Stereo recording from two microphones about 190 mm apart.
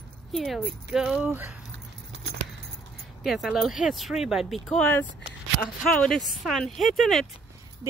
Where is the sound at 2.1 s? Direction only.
75° right (ahead or behind).